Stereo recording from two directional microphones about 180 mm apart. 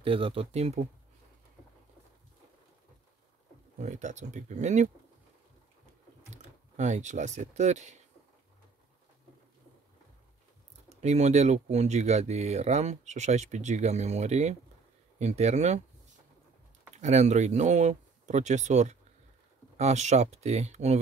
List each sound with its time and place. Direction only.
0.0 s speech: 30° right (ahead or behind)
3.7 s speech: 40° right (ahead or behind)
6.3 s speech: 40° right (ahead or behind)
11.0 s speech: 40° right (ahead or behind)
16.9 s speech: 40° right (ahead or behind)